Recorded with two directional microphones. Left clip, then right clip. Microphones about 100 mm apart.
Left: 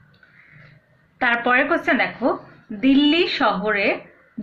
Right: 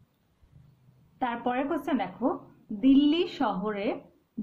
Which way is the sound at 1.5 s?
35° right (ahead or behind).